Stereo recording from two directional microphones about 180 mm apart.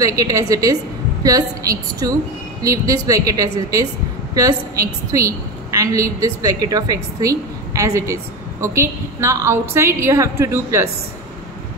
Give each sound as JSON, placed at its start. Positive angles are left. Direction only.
{"t": 0.0, "sound": "a woman's voice", "side_deg": -20}